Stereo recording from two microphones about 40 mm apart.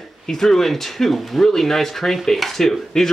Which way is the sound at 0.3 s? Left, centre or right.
Centre.